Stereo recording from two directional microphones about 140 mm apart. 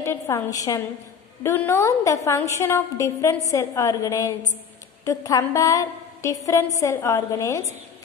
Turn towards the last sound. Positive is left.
turn(degrees=20)  # may be behind; listen again after turning